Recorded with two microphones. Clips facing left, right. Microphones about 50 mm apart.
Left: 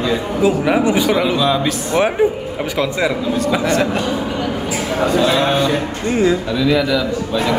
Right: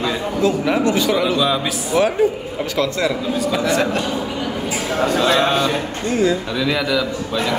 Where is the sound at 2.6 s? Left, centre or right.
Centre.